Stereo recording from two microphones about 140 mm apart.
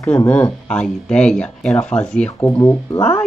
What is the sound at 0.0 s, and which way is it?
Speech, 15° left (ahead or behind).